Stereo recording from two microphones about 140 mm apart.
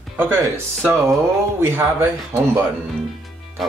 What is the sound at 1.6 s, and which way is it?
Speech, 15° right (ahead or behind).